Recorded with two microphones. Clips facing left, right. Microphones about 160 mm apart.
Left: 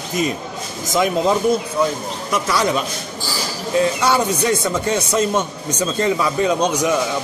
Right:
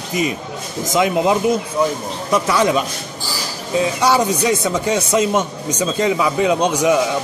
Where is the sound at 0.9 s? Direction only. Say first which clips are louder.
Right 1 dB; 15° right (ahead or behind).